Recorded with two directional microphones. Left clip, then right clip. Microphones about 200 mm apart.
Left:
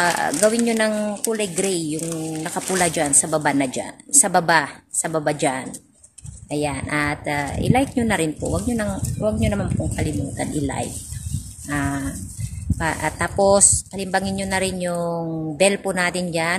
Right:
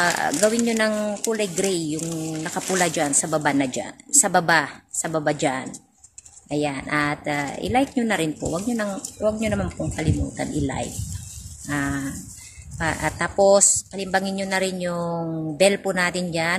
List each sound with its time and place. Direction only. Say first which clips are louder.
0.0 s speech: left 2 dB; 10° right (ahead or behind)